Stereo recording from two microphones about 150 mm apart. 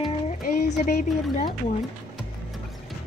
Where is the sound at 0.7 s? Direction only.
55° left (ahead or behind).